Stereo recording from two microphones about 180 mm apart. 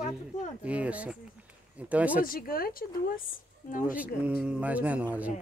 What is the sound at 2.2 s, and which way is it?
Speech, 55° left (ahead or behind).